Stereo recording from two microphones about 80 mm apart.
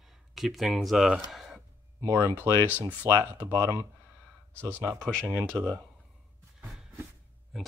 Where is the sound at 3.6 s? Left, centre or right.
Right.